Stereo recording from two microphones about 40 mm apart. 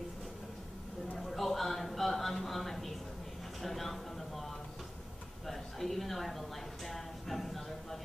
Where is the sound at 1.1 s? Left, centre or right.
Centre.